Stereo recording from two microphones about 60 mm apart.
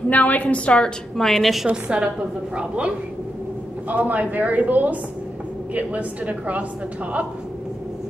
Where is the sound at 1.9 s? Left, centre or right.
Centre.